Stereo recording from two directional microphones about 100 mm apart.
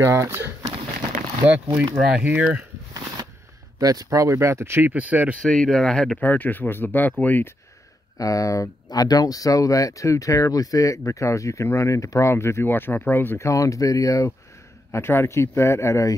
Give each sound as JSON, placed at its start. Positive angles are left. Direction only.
{"t": 0.0, "sound": "speech", "side_deg": -30}
{"t": 2.0, "sound": "speech", "side_deg": -10}
{"t": 3.8, "sound": "speech", "side_deg": -40}
{"t": 5.4, "sound": "speech", "side_deg": 5}
{"t": 6.1, "sound": "speech", "side_deg": 15}
{"t": 8.2, "sound": "speech", "side_deg": 35}
{"t": 14.9, "sound": "speech", "side_deg": 25}